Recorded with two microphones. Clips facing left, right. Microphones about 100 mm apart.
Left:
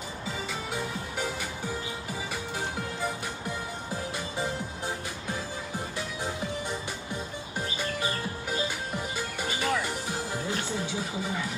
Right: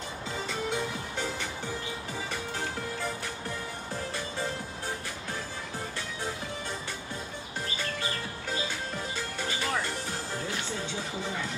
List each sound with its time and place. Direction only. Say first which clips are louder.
0.5 s music: right 4 dB; 5° left (ahead or behind)
3.0 s music: left 2 dB; 15° left (ahead or behind)
8.5 s music: left 1 dB; 10° left (ahead or behind)